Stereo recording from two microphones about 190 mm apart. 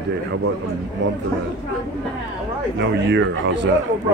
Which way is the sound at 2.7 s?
75° right (ahead or behind).